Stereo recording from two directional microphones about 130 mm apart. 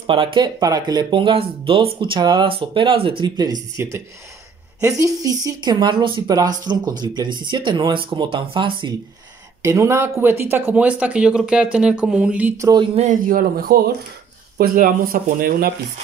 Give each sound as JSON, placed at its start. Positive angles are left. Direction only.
{"t": 0.0, "sound": "speech", "side_deg": -45}
{"t": 9.6, "sound": "speech", "side_deg": -20}
{"t": 12.5, "sound": "speech", "side_deg": -30}
{"t": 12.9, "sound": "a man's voice", "side_deg": -70}
{"t": 14.7, "sound": "speech", "side_deg": -90}